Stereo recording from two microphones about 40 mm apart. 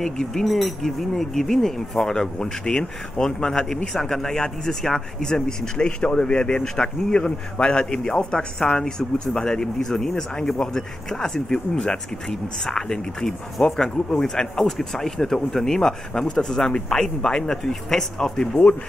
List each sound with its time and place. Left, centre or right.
0.0 s speech: centre
7.2 s a man's voice: left